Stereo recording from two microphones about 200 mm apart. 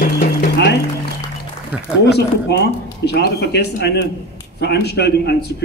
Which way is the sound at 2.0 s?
55° left (ahead or behind).